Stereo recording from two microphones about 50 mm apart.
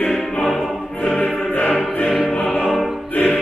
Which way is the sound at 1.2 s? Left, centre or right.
Left.